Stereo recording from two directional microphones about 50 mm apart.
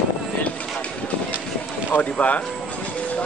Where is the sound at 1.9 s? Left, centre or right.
Left.